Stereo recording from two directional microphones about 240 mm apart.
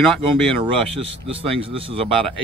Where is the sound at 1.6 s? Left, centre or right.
Right.